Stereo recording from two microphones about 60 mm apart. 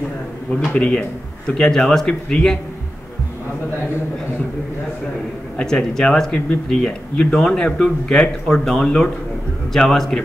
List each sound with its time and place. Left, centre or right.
0.7 s speech: centre
5.6 s speech: centre